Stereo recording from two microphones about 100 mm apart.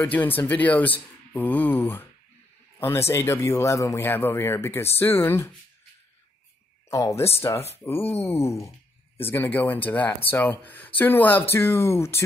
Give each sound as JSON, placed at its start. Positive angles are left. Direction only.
{"t": 0.0, "sound": "speech", "side_deg": 20}
{"t": 6.9, "sound": "speech", "side_deg": 30}
{"t": 8.1, "sound": "a sound", "side_deg": 90}
{"t": 9.3, "sound": "speech", "side_deg": 20}